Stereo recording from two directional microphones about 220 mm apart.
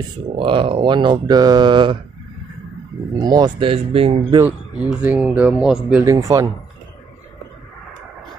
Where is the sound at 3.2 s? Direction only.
20° right (ahead or behind).